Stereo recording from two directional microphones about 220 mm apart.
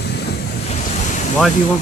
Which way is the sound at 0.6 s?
35° left (ahead or behind).